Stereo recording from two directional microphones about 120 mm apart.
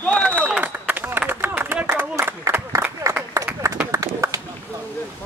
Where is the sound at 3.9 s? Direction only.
25° right (ahead or behind).